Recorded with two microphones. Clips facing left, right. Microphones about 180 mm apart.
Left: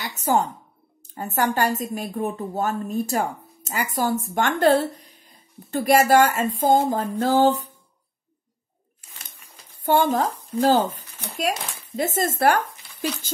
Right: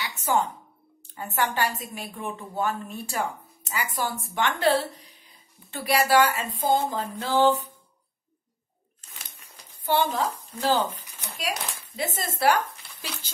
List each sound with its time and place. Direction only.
0.0 s a sound: 40° left (ahead or behind)
1.1 s a woman's voice: 40° left (ahead or behind)
9.8 s a woman's voice: 45° left (ahead or behind)